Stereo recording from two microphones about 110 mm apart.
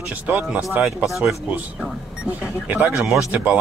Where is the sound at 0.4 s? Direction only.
5° right (ahead or behind).